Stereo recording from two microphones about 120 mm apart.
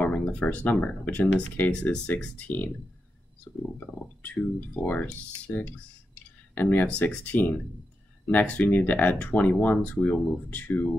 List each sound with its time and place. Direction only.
0.0 s speech: 10° left (ahead or behind)